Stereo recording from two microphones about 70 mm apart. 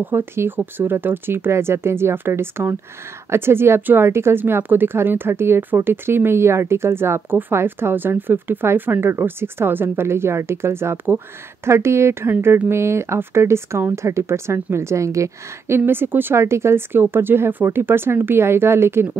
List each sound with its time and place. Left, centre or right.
0.0 s a woman's voice: right
15.8 s a woman's voice: right